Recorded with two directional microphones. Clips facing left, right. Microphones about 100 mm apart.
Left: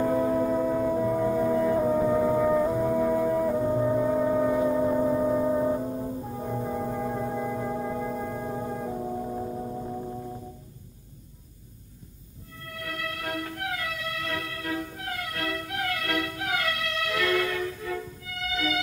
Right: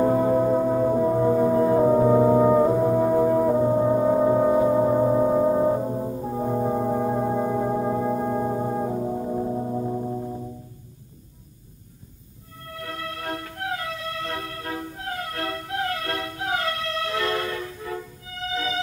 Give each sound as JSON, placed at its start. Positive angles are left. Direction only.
{"t": 0.0, "sound": "music", "side_deg": -30}
{"t": 12.6, "sound": "music", "side_deg": -30}